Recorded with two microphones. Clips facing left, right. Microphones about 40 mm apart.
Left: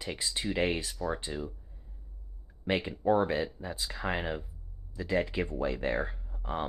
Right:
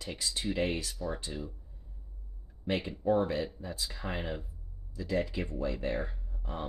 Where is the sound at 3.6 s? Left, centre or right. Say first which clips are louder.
Left 3 dB; left.